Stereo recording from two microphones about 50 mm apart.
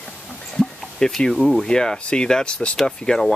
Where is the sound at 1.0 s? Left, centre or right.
Centre.